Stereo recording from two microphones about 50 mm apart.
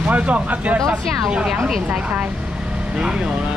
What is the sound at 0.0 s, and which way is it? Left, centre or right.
Speech, right.